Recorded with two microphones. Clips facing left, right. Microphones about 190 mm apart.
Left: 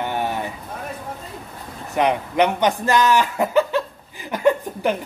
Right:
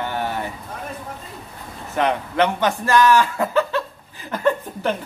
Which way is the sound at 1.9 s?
15° left (ahead or behind).